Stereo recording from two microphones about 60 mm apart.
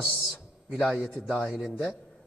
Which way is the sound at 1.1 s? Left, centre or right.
Centre.